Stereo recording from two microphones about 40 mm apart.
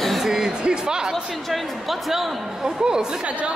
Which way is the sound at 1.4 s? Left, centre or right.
Centre.